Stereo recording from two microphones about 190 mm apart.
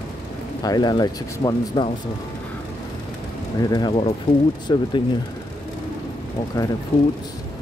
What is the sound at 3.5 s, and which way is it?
Speech, 20° left (ahead or behind).